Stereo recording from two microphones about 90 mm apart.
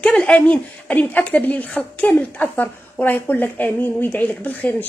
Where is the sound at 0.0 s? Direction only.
10° left (ahead or behind).